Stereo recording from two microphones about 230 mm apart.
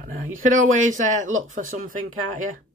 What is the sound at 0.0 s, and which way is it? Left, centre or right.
Speech, right.